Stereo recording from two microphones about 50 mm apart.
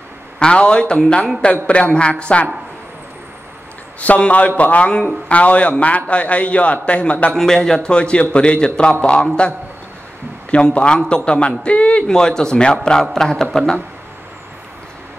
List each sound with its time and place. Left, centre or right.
0.4 s a man's voice: centre
4.0 s a man's voice: left
7.3 s a man's voice: centre
10.5 s a man's voice: left
12.1 s a man's voice: centre